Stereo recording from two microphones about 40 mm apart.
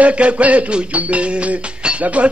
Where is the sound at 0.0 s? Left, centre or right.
Right.